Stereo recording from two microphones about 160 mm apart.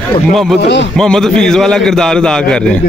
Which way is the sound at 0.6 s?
90° left.